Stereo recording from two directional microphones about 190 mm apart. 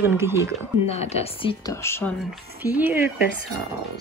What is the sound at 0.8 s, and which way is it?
Speech, 35° left (ahead or behind).